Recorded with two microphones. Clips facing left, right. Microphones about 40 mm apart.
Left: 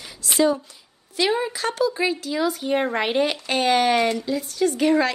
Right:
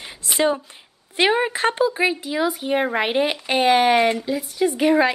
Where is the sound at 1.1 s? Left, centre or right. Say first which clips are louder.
Right 4 dB; right.